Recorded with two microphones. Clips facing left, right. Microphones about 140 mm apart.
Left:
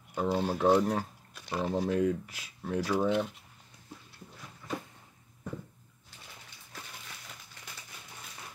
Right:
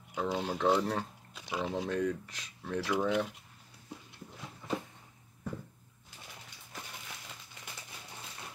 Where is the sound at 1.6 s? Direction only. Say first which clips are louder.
Left 4 dB; centre (ahead or behind).